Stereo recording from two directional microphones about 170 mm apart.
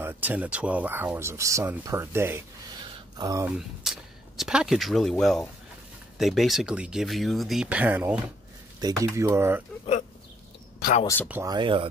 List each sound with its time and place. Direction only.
0.0 s speech: 10° right (ahead or behind)
3.4 s speech: 5° right (ahead or behind)
10.8 s speech: 50° left (ahead or behind)
11.4 s speech: 25° right (ahead or behind)